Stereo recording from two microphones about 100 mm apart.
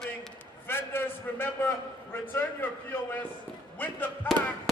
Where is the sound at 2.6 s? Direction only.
20° left (ahead or behind).